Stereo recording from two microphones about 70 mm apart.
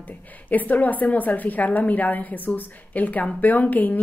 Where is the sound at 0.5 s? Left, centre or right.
Left.